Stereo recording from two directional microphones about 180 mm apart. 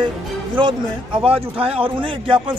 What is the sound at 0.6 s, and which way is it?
A man's voice, 25° right (ahead or behind).